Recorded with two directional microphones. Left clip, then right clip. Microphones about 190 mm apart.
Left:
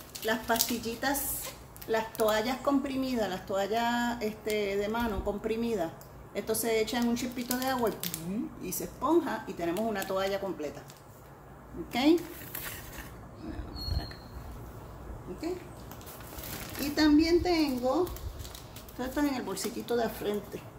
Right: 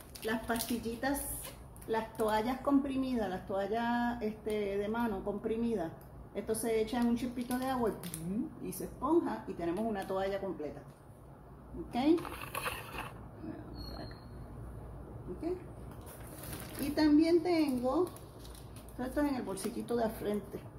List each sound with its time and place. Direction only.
0.2 s a woman's voice: 10° left (ahead or behind)
11.9 s a woman's voice: 15° left (ahead or behind)
16.9 s a woman's voice: 5° left (ahead or behind)
18.9 s a woman's voice: 10° left (ahead or behind)